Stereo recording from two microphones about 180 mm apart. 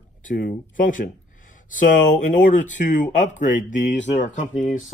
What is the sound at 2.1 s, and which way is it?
Speech, 45° left (ahead or behind).